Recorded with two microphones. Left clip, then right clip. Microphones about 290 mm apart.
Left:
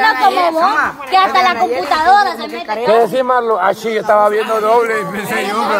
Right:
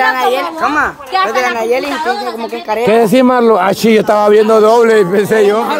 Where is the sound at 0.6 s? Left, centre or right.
Right.